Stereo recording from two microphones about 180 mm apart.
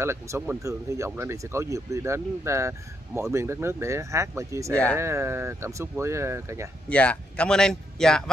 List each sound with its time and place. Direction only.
0.0 s speech: 15° right (ahead or behind)
6.9 s speech: 5° left (ahead or behind)